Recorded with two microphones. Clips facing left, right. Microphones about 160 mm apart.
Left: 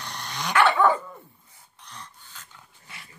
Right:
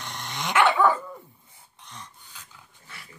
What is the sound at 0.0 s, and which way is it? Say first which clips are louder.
Dog: even; 20° right (ahead or behind).